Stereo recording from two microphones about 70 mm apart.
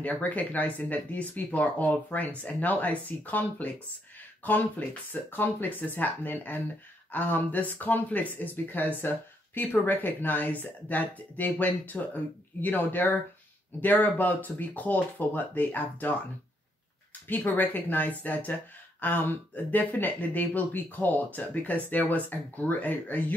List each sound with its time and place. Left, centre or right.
0.0 s speech: left
17.4 s speech: left